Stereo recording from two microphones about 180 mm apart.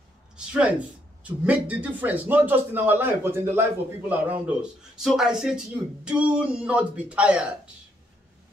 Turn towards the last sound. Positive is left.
turn(degrees=-5)  # may be behind; listen again after turning